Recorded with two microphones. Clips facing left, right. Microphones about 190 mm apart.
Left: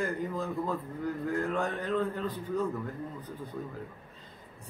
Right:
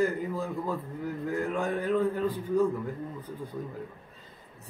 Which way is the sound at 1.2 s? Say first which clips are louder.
Right 2 dB; 10° right (ahead or behind).